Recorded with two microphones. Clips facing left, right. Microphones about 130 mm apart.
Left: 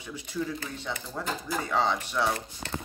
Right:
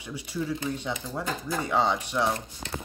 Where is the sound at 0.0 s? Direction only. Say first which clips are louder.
Right 1 dB; 10° right (ahead or behind).